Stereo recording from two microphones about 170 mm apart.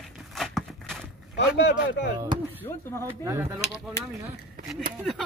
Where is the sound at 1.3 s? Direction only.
90° left.